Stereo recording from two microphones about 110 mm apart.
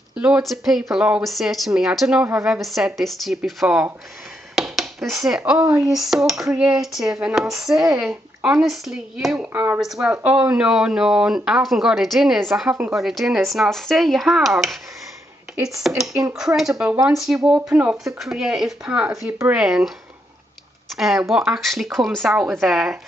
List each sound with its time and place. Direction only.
0.1 s a sound: 10° right (ahead or behind)
0.4 s cutlery: centre (ahead or behind)
4.6 s a sound: centre (ahead or behind)
5.8 s cutlery: 5° right (ahead or behind)
9.5 s speech: 15° right (ahead or behind)
9.8 s cutlery: 5° right (ahead or behind)
15.8 s cutlery: 5° right (ahead or behind)
20.9 s cutlery: centre (ahead or behind)